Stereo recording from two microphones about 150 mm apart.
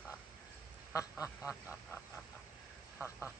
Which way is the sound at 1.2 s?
10° right (ahead or behind).